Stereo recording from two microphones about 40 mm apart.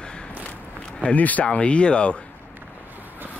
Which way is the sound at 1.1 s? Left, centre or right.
Left.